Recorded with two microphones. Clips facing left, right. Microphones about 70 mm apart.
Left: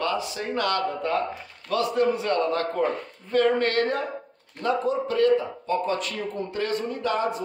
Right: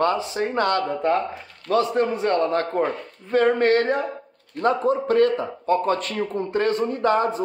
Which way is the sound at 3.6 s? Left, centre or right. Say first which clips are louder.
Right 5 dB; right.